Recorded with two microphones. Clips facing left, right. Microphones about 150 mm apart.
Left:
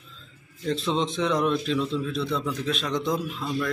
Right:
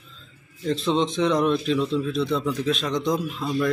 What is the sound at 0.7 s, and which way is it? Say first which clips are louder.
A man's voice: right 3 dB; centre (ahead or behind).